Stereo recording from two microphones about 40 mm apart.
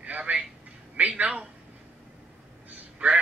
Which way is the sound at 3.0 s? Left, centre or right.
Right.